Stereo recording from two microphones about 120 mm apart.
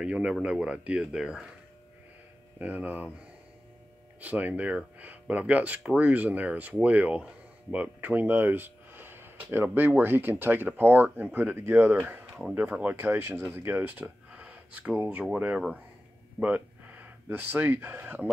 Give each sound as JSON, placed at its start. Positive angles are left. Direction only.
{"t": 0.0, "sound": "speech", "side_deg": -10}
{"t": 2.6, "sound": "speech", "side_deg": -15}
{"t": 4.2, "sound": "speech", "side_deg": -15}